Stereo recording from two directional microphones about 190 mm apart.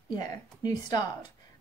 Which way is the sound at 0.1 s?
20° left (ahead or behind).